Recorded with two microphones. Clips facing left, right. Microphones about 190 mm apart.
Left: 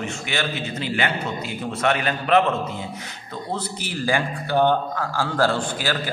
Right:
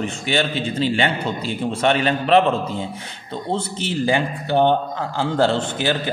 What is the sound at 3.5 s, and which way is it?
A man's voice, 25° right (ahead or behind).